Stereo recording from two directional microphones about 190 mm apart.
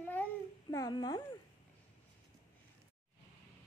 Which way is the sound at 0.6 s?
20° left (ahead or behind).